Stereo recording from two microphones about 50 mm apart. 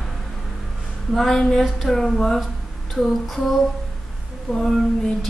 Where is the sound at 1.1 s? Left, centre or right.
Centre.